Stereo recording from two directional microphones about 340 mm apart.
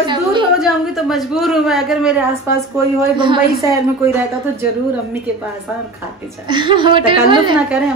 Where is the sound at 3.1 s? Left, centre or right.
Centre.